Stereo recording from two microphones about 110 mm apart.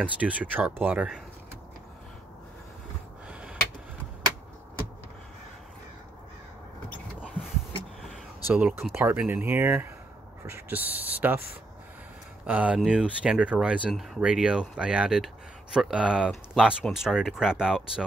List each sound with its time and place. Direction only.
0.0 s speech: 15° right (ahead or behind)
3.3 s a sound: 10° right (ahead or behind)
8.5 s speech: 15° right (ahead or behind)